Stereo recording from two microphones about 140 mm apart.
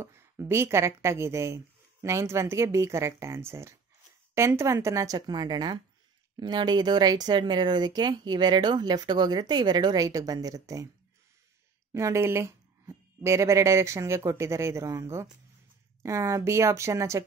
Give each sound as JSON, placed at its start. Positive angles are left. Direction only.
{"t": 0.0, "sound": "a woman's voice", "side_deg": -20}
{"t": 11.9, "sound": "a woman's voice", "side_deg": -20}